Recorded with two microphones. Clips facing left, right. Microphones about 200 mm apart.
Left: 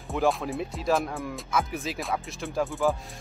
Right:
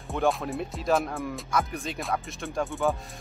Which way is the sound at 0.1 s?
Centre (ahead or behind).